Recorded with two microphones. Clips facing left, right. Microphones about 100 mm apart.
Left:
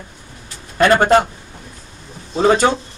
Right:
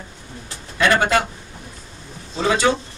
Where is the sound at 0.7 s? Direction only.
45° left (ahead or behind).